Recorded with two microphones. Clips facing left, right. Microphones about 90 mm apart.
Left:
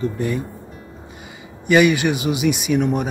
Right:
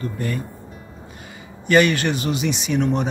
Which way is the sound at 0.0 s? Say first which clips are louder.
Left 4 dB; 15° left (ahead or behind).